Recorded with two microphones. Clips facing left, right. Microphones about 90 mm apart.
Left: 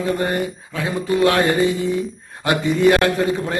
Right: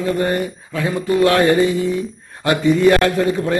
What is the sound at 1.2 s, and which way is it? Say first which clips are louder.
Speech: right 3 dB; 25° left (ahead or behind).